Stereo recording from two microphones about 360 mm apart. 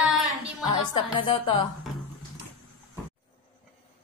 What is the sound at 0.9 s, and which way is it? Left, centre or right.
Music, centre.